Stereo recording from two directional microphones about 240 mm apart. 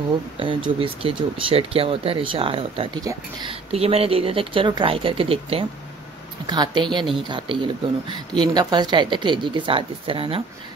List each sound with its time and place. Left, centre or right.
0.4 s speech: centre